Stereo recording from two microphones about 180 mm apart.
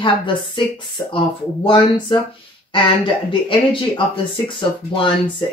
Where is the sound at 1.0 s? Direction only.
15° left (ahead or behind).